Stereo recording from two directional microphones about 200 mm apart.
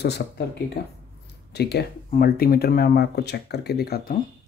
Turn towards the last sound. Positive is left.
turn(degrees=50)  # may be behind; listen again after turning